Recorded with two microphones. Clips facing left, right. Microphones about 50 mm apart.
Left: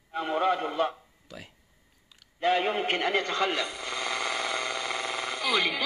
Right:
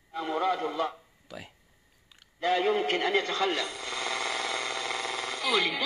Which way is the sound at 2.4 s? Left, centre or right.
Left.